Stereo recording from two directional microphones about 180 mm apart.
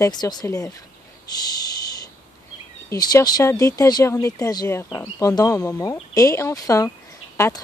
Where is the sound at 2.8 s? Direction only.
20° left (ahead or behind).